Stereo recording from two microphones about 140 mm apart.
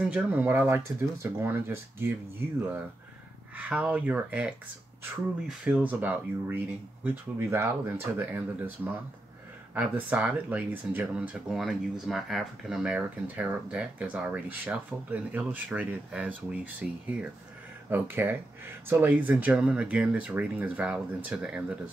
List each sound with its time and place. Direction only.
0.0 s speech: 10° right (ahead or behind)
3.5 s speech: 10° right (ahead or behind)